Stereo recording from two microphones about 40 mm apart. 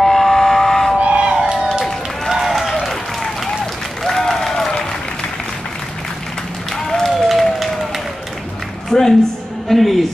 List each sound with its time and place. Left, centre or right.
0.0 s train: centre
1.0 s crowd: right
2.2 s run: centre
4.0 s applause: centre
6.9 s applause: centre
8.9 s music: centre
9.7 s music: centre